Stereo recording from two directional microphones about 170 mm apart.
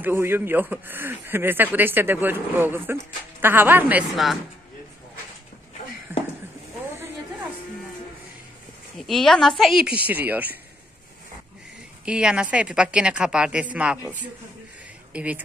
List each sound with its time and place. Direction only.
0.0 s a man's voice: 15° right (ahead or behind)
4.1 s a woman's voice: centre (ahead or behind)
6.1 s a sound: 10° right (ahead or behind)
8.9 s a woman's voice: centre (ahead or behind)
12.0 s a man's voice: 5° right (ahead or behind)